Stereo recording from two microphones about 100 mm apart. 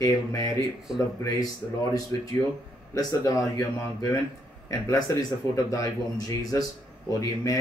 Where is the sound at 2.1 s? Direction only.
30° left (ahead or behind).